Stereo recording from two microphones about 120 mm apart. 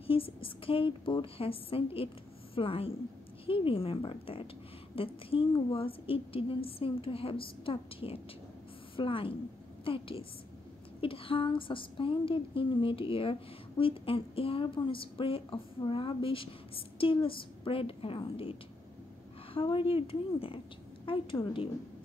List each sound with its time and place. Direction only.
0.0 s a woman's voice: 50° left (ahead or behind)